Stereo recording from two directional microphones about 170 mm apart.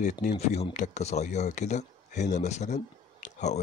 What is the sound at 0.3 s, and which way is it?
Speech, 35° left (ahead or behind).